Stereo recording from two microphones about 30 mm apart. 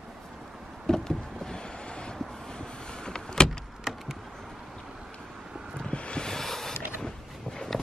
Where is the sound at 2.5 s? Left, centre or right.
Left.